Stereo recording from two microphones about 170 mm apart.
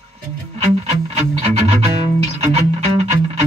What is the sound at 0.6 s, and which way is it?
Music, 40° right (ahead or behind).